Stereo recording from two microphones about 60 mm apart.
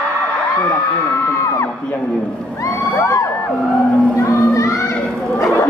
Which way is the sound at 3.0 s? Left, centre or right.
Left.